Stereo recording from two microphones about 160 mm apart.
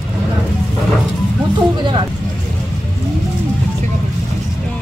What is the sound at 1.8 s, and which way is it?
Speech, 30° right (ahead or behind).